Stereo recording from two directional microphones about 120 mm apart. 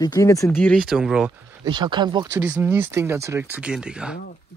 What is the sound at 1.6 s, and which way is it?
Speech, 40° right (ahead or behind).